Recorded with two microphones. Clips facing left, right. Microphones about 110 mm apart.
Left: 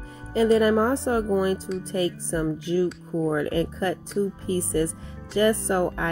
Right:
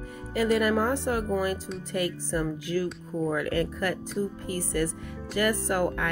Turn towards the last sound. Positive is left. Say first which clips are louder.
# left 3 dB
turn(degrees=25)  # may be behind; listen again after turning